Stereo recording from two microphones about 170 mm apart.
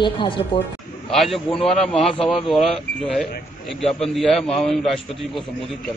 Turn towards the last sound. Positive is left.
turn(degrees=0)  # may be behind; listen again after turning